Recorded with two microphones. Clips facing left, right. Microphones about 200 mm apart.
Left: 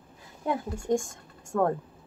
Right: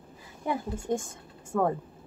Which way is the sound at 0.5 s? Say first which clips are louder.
Left 2 dB; 5° right (ahead or behind).